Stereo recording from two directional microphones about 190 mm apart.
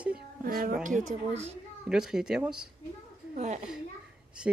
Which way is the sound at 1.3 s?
35° right (ahead or behind).